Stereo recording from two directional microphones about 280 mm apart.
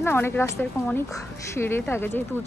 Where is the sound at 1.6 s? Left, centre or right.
Centre.